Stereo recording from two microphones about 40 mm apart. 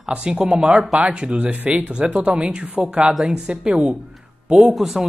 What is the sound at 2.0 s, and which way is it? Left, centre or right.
A man's voice, right.